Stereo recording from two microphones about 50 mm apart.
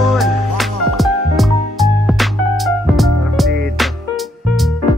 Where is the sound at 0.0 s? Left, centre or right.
Centre.